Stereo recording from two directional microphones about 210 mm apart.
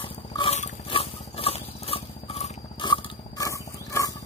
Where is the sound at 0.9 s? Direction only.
25° left (ahead or behind).